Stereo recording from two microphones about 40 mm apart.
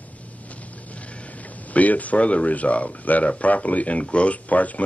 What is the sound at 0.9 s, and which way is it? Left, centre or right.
Speech, left.